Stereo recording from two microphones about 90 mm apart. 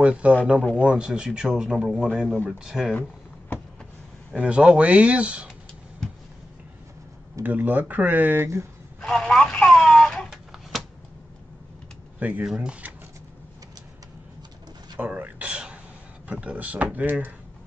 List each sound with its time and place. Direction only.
0.0 s a man's voice: 15° right (ahead or behind)
3.0 s a sound: 20° left (ahead or behind)
4.3 s a man's voice: 10° right (ahead or behind)
7.4 s speech: 20° right (ahead or behind)
9.0 s telephone: 5° left (ahead or behind)
12.2 s a man's voice: 15° right (ahead or behind)
15.0 s a sound: 20° right (ahead or behind)
16.3 s a man's voice: 15° right (ahead or behind)